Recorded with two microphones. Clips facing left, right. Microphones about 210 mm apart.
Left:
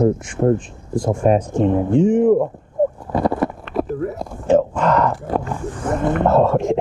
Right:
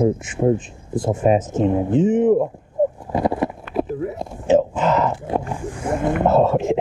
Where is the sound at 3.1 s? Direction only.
25° right (ahead or behind).